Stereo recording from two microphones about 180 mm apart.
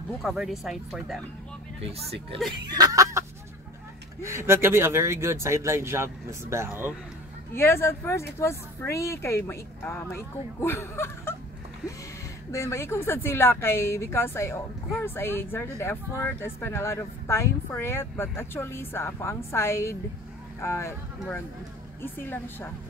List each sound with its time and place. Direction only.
0.2 s speech: centre (ahead or behind)
1.8 s speech: 35° right (ahead or behind)
2.6 s speech: 20° right (ahead or behind)
7.5 s speech: 15° left (ahead or behind)
12.4 s speech: 15° left (ahead or behind)
22.0 s speech: 10° left (ahead or behind)